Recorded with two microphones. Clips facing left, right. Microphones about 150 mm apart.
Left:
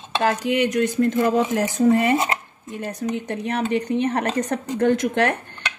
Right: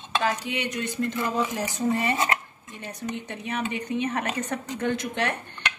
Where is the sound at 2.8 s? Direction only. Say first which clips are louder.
Left 7 dB; 45° left (ahead or behind).